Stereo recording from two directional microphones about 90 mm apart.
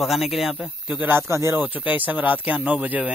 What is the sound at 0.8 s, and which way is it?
Speech, 20° right (ahead or behind).